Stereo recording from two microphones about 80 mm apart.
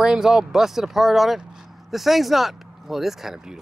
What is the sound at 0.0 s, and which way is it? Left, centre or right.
Speech, centre.